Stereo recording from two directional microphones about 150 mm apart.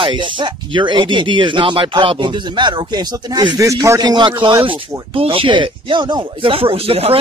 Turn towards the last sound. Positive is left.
turn(degrees=-40)  # may be behind; listen again after turning